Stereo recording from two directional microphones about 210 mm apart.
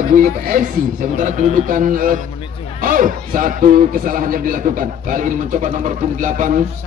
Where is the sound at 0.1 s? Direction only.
40° right (ahead or behind).